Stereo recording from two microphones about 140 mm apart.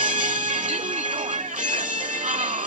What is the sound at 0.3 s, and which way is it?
Music, 65° right (ahead or behind).